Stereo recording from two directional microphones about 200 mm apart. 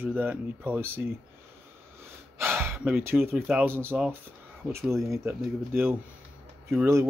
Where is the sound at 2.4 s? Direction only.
10° right (ahead or behind).